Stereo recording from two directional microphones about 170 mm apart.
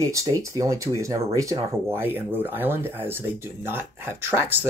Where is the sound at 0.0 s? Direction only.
20° right (ahead or behind).